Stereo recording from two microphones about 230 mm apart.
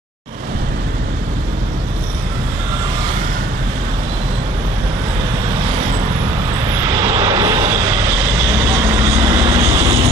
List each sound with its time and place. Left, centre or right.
7.0 s vehicle: centre
9.1 s vehicle: right
9.7 s vehicle: right